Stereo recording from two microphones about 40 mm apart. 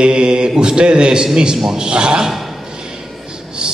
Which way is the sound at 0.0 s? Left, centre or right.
Right.